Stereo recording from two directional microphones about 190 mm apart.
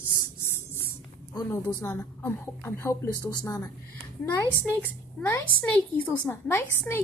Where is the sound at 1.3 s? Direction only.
20° left (ahead or behind).